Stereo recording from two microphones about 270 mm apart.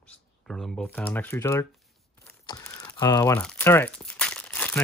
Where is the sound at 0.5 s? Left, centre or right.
Centre.